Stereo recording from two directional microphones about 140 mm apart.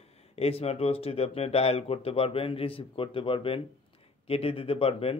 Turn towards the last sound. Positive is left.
turn(degrees=45)  # may be behind; listen again after turning